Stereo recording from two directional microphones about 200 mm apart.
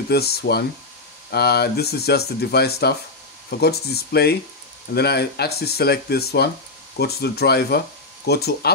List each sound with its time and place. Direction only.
0.1 s speech: 55° left (ahead or behind)